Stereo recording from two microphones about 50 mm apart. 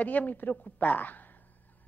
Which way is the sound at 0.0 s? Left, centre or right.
Left.